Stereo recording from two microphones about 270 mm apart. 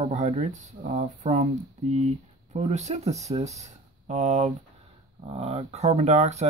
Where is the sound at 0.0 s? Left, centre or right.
Right.